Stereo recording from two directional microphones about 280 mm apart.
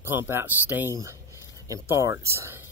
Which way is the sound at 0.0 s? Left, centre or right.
Centre.